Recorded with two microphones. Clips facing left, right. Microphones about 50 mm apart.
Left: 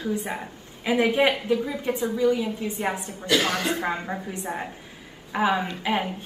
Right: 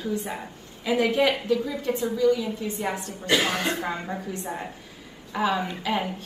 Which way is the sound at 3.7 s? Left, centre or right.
Centre.